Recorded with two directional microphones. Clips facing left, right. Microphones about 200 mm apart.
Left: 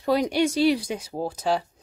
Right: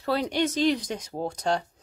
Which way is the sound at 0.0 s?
15° left (ahead or behind).